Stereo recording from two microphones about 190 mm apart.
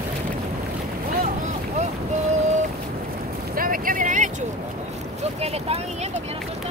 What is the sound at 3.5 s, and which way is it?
Boat, 50° right (ahead or behind).